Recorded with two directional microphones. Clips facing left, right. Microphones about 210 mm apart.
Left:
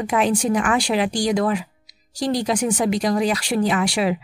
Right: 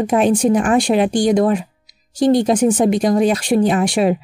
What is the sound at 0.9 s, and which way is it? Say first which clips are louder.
Speech: right 6 dB; 30° right (ahead or behind).